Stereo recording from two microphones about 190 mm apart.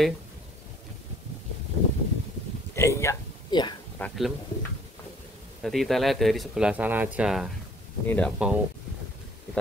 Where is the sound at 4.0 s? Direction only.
10° left (ahead or behind).